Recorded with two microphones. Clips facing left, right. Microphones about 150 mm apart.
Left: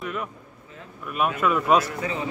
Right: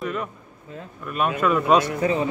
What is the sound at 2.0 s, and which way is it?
Speech, 35° right (ahead or behind).